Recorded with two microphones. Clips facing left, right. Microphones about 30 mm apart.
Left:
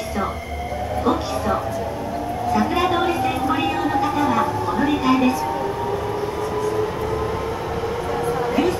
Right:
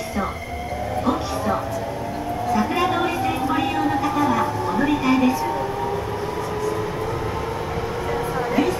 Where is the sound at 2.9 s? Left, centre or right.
Centre.